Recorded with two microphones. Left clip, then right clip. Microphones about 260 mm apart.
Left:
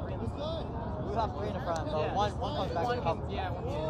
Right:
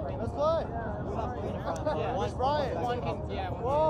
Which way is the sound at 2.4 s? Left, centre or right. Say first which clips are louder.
Right 6 dB; centre.